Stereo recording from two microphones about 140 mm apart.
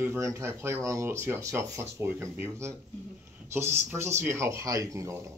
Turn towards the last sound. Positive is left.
turn(degrees=-20)  # may be behind; listen again after turning